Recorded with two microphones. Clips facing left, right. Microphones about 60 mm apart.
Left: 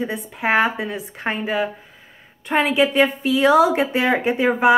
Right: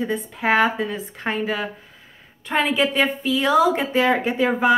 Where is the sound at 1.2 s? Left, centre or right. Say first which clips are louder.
Left 2 dB; left.